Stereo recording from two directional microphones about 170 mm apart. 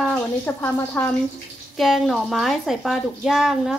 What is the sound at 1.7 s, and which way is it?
A woman's voice, centre (ahead or behind).